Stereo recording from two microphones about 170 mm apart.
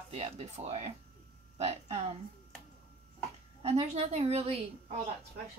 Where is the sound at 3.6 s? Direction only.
40° right (ahead or behind).